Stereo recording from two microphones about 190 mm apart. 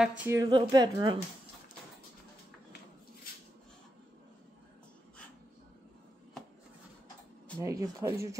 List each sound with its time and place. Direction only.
0.0 s a woman's voice: 10° right (ahead or behind)
7.5 s speech: 15° right (ahead or behind)